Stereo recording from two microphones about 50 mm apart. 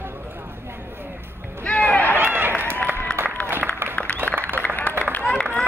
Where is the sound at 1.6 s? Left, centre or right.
Left.